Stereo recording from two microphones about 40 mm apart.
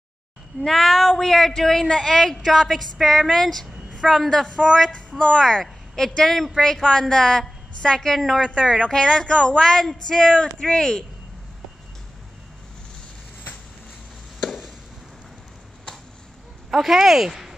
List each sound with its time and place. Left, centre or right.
0.6 s a woman's voice: centre
8.5 s a woman's voice: left
14.4 s a sound: centre
16.7 s speech: centre